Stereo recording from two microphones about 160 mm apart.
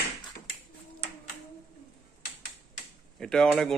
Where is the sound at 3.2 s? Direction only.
5° left (ahead or behind).